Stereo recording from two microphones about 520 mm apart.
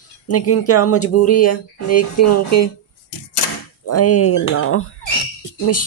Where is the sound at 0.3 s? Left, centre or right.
Left.